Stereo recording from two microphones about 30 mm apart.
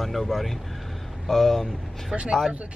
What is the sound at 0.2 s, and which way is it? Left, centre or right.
Speech, centre.